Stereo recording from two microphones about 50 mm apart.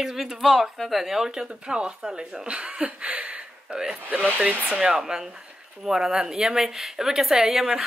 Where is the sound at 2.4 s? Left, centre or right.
Right.